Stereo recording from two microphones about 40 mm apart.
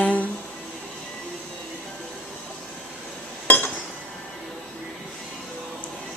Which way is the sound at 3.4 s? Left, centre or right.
Left.